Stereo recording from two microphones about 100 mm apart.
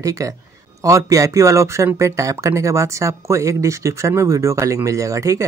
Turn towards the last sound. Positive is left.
turn(degrees=-35)  # may be behind; listen again after turning